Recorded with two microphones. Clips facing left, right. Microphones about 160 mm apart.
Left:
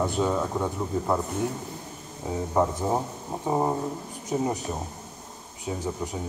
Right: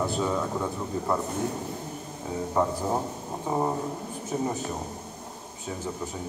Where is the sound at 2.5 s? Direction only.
10° left (ahead or behind).